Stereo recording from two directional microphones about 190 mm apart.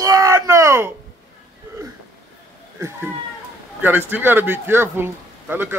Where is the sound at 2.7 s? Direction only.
15° right (ahead or behind).